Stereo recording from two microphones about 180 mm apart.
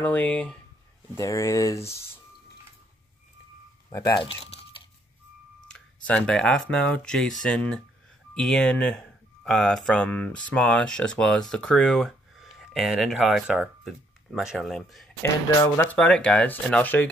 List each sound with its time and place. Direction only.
0.0 s speech: 10° left (ahead or behind)
1.1 s speech: 15° left (ahead or behind)
3.9 s speech: 15° left (ahead or behind)
5.7 s speech: 5° left (ahead or behind)
15.2 s speech: 15° left (ahead or behind)